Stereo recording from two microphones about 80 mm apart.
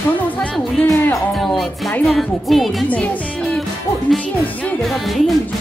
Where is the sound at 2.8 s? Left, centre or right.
Centre.